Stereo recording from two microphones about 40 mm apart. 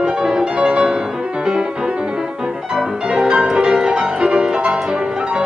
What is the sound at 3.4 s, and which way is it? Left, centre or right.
Music, centre.